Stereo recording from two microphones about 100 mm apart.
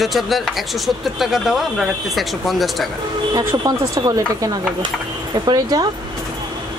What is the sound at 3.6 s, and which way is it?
Speech, 40° right (ahead or behind).